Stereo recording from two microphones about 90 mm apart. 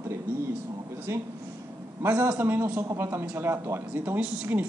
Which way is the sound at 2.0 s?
20° right (ahead or behind).